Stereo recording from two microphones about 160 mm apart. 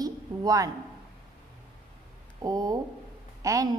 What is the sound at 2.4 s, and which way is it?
A woman's voice, 25° right (ahead or behind).